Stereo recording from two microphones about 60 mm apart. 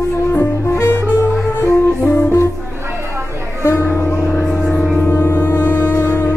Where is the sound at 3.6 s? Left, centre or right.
Left.